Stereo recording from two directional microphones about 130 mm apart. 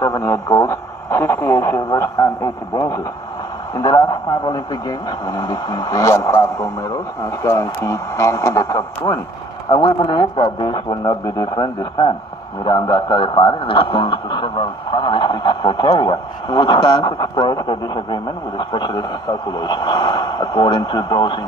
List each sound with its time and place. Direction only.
0.0 s a man's voice: 20° left (ahead or behind)
9.7 s speech: 35° left (ahead or behind)